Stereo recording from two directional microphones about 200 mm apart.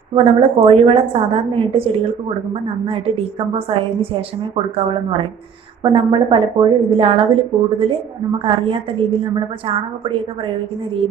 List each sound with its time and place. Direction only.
0.1 s a woman's voice: 30° right (ahead or behind)
2.9 s a woman's voice: 30° right (ahead or behind)